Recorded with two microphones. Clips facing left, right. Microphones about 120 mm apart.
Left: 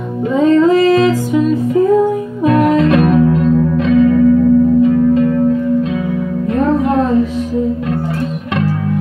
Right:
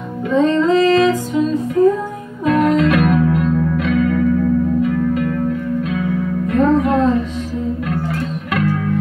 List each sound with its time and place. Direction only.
0.4 s music: 10° left (ahead or behind)
2.4 s music: 35° left (ahead or behind)
8.5 s music: 30° left (ahead or behind)